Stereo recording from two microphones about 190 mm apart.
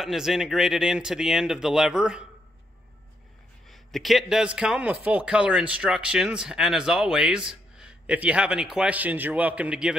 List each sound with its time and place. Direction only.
0.0 s a man's voice: centre (ahead or behind)
3.6 s a man's voice: centre (ahead or behind)